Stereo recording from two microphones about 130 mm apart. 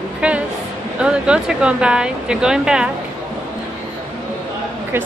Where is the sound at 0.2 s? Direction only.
10° right (ahead or behind).